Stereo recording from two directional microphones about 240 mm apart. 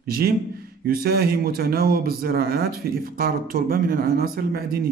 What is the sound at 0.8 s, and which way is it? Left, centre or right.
Speech, right.